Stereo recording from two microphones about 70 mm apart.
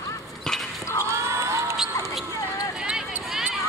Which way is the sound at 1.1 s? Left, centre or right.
Right.